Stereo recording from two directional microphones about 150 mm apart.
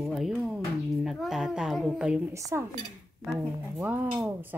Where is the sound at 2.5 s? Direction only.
15° right (ahead or behind).